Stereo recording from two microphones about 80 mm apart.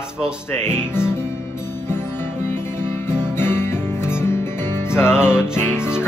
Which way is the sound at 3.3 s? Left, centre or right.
Left.